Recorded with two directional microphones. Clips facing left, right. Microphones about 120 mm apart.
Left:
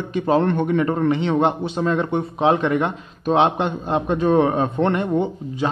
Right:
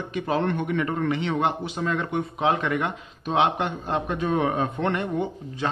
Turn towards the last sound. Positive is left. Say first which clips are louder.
# left 5 dB
turn(degrees=25)  # may be behind; listen again after turning